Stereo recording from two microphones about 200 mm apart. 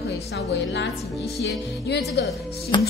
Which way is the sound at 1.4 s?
55° left (ahead or behind).